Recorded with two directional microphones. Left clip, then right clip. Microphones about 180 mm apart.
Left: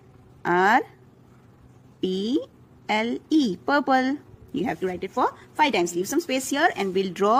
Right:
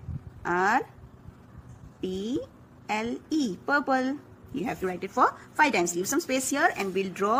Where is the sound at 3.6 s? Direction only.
40° left (ahead or behind).